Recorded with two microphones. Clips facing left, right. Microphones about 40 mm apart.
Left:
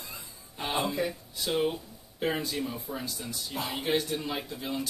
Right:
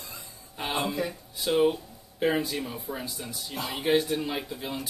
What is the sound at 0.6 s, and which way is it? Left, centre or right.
Speech, centre.